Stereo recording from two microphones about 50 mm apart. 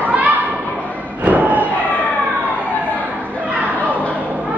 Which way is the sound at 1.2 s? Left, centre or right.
Right.